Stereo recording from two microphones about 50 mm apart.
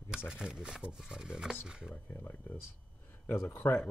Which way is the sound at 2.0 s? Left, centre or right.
Left.